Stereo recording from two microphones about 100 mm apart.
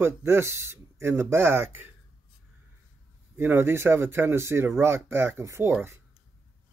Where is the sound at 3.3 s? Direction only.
20° right (ahead or behind).